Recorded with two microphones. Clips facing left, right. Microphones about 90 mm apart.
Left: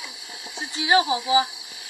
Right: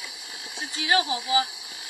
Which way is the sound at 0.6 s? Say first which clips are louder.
Left 4 dB; 20° left (ahead or behind).